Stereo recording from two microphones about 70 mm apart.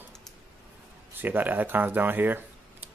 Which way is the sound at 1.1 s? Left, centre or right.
Right.